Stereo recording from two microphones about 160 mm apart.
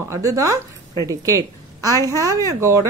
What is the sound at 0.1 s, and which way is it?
A woman's voice, 20° right (ahead or behind).